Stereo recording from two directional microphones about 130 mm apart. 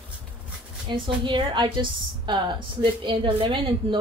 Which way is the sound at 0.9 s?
40° right (ahead or behind).